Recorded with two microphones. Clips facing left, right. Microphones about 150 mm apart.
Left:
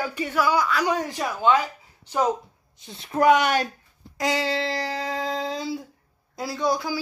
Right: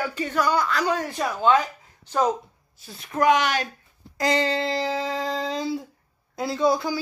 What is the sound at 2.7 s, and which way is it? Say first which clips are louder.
Speech: left 1 dB; 25° left (ahead or behind).